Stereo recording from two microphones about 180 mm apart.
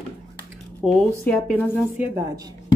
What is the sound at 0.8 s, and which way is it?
Speech, centre (ahead or behind).